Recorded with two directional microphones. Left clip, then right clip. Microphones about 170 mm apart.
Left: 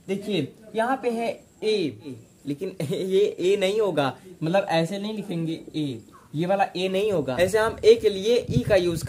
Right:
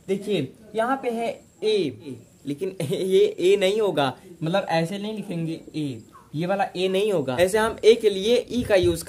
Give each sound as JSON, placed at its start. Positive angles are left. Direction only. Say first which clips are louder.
{"t": 0.1, "sound": "speech", "louder": "right 2 dB", "side_deg": -25}